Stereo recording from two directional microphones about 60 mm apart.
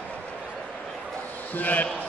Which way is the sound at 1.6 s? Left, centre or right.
Left.